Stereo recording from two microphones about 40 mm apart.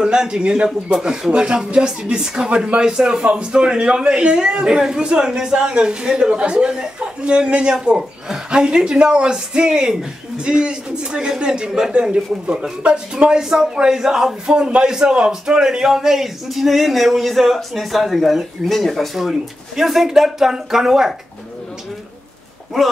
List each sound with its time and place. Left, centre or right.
0.0 s a man's voice: centre
0.9 s speech: centre
1.3 s a man's voice: right
2.5 s a man's voice: right
2.8 s a man's voice: centre
22.7 s a man's voice: centre